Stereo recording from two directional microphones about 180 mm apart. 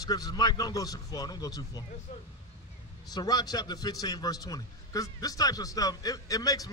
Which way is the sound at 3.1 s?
20° left (ahead or behind).